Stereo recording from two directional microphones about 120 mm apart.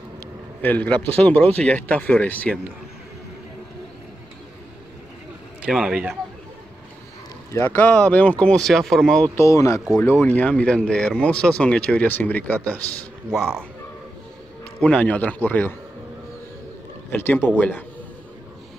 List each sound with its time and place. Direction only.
0.6 s speech: 15° left (ahead or behind)
5.7 s a man's voice: 5° right (ahead or behind)
7.5 s speech: 15° left (ahead or behind)
9.3 s speech: 25° left (ahead or behind)
10.2 s speech: 10° left (ahead or behind)
14.8 s speech: 10° left (ahead or behind)
17.1 s speech: 15° left (ahead or behind)